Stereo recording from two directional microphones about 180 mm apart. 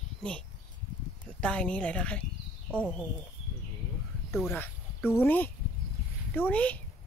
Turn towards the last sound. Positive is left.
turn(degrees=10)  # may be behind; listen again after turning